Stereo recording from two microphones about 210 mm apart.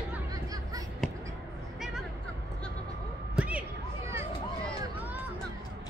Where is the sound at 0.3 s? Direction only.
15° right (ahead or behind).